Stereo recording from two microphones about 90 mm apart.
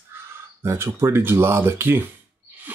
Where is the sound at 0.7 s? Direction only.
30° right (ahead or behind).